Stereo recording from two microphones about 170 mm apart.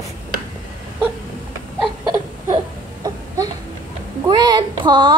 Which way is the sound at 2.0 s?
20° right (ahead or behind).